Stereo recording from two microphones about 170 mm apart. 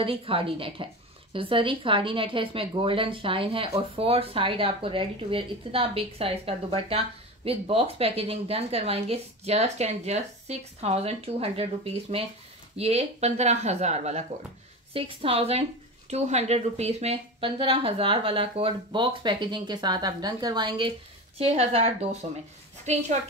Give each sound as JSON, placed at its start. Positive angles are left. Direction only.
{"t": 0.0, "sound": "a woman's voice", "side_deg": -35}